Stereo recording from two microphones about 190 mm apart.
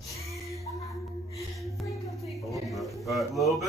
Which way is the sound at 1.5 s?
Centre (ahead or behind).